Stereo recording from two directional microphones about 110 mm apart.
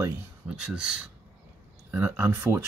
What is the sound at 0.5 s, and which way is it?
Speech, 5° right (ahead or behind).